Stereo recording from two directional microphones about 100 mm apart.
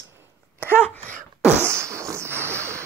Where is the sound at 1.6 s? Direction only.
30° right (ahead or behind).